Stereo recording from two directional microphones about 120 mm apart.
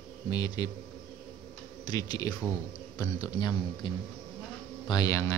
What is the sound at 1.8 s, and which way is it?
Speech, 35° left (ahead or behind).